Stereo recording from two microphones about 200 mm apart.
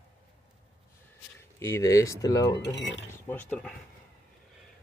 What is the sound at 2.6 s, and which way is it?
Speech, 65° left (ahead or behind).